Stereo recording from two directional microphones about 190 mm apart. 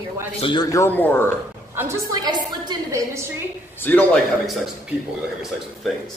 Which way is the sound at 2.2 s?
20° right (ahead or behind).